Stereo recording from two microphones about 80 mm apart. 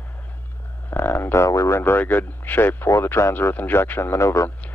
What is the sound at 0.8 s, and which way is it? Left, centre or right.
Speech, left.